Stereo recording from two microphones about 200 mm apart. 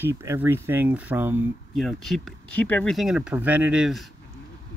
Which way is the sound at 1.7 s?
Centre (ahead or behind).